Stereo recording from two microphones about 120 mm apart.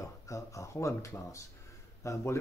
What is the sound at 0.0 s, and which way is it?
Speech, 25° left (ahead or behind).